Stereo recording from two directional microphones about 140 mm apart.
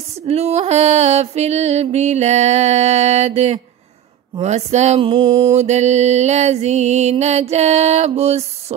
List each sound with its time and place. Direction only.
0.3 s mantra: 50° right (ahead or behind)